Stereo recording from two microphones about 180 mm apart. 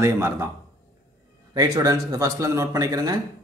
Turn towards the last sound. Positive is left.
turn(degrees=-20)  # may be behind; listen again after turning